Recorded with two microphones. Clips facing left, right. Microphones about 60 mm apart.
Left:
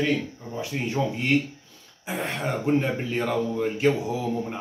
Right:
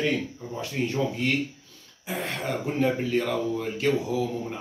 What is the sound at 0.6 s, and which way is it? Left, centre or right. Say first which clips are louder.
Speech: even; left.